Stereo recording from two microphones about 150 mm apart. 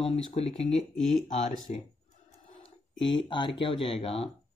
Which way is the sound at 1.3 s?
60° left (ahead or behind).